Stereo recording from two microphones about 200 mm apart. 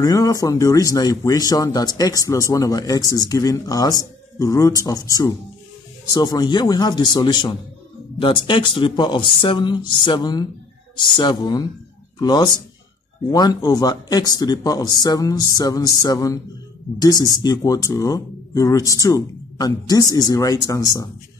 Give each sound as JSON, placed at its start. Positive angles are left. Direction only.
{"t": 0.0, "sound": "speech", "side_deg": 20}